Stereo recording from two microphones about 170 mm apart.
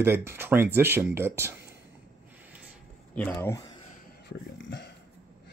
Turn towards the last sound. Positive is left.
turn(degrees=80)